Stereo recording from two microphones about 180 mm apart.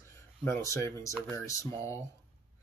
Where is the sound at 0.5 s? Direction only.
15° left (ahead or behind).